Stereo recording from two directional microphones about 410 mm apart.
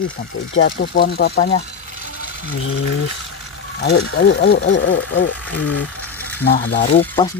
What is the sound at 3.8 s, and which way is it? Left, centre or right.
Speech, left.